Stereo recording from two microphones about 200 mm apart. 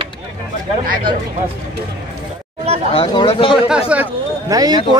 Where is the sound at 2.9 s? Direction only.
25° left (ahead or behind).